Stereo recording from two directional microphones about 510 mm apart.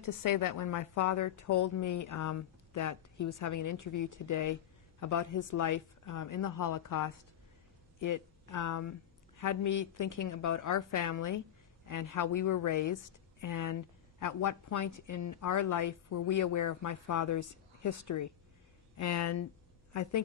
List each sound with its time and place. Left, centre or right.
0.0 s a woman's voice: left